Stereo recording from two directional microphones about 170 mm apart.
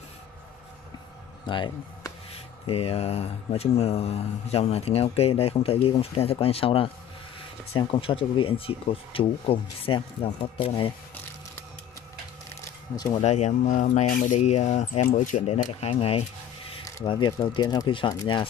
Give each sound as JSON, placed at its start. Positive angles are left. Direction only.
{"t": 1.5, "sound": "speech", "side_deg": 30}
{"t": 13.1, "sound": "speech", "side_deg": 40}